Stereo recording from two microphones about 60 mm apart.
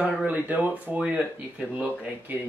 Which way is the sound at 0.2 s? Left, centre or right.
Right.